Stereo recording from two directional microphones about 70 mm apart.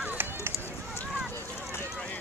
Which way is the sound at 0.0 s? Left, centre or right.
Right.